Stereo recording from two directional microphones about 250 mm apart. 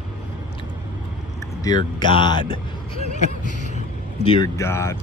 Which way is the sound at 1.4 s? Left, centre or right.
Centre.